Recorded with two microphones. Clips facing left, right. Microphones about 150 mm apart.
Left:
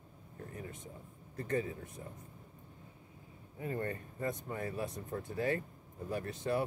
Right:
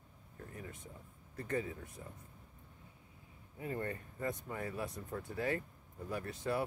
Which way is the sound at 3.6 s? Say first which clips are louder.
Left 2 dB; 35° left (ahead or behind).